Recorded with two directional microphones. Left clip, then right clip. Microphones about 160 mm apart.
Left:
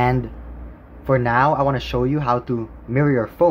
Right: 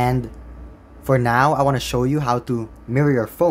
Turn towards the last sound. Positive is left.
turn(degrees=-15)  # may be behind; listen again after turning